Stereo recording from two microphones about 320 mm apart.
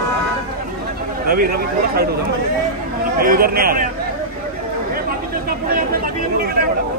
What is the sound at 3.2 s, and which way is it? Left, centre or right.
Speech, right.